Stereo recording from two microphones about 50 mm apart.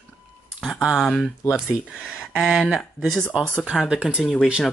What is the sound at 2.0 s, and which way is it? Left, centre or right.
Speech, centre.